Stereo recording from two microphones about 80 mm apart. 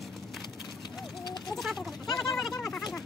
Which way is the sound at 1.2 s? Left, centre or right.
Left.